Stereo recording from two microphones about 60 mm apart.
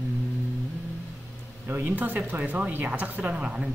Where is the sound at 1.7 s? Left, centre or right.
Right.